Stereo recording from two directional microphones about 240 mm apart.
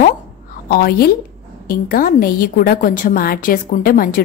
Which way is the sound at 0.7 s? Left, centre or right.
Left.